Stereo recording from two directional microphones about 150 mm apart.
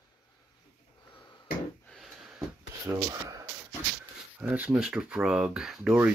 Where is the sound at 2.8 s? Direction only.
20° right (ahead or behind).